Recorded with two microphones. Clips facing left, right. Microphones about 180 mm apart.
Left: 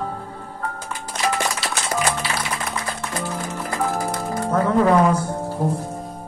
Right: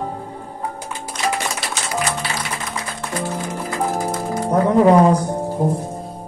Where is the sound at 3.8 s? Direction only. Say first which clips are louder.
Right 2 dB; 20° right (ahead or behind).